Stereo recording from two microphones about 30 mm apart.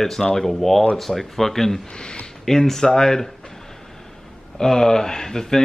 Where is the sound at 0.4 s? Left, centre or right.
Centre.